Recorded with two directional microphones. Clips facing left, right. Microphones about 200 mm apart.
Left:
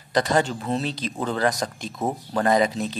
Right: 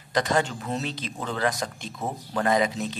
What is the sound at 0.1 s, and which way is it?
Speech, 35° left (ahead or behind).